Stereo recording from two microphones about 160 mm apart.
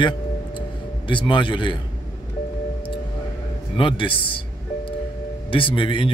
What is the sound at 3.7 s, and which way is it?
Speech, 30° left (ahead or behind).